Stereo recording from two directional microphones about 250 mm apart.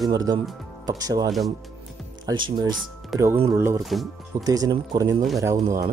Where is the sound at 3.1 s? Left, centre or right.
Centre.